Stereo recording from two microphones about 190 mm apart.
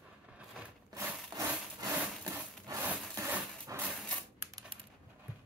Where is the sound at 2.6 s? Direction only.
15° right (ahead or behind).